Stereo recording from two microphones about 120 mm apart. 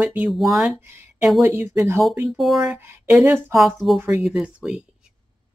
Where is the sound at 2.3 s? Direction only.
Centre (ahead or behind).